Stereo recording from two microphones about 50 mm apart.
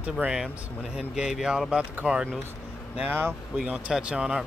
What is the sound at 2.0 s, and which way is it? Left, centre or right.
Speech, right.